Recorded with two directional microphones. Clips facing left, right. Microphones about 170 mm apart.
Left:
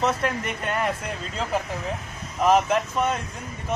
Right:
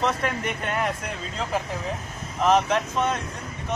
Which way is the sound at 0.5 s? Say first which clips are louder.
Even; centre (ahead or behind).